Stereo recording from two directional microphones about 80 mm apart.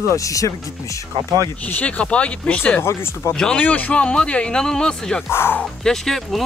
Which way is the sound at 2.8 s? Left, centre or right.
Left.